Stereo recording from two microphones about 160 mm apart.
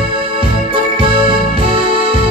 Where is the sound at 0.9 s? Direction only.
35° right (ahead or behind).